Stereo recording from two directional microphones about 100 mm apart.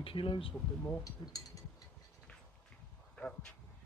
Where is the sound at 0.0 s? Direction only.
60° left (ahead or behind).